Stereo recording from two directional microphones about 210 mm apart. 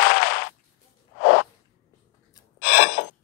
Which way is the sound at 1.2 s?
50° left (ahead or behind).